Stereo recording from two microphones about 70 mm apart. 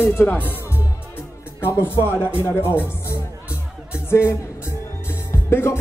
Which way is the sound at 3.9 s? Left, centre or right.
Left.